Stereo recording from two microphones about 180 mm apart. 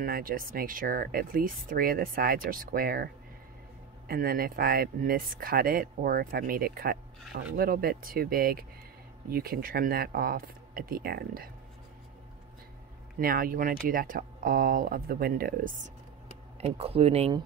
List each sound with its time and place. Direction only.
0.0 s speech: 55° right (ahead or behind)
4.1 s speech: 55° right (ahead or behind)
13.2 s speech: 50° right (ahead or behind)
16.5 s speech: 35° right (ahead or behind)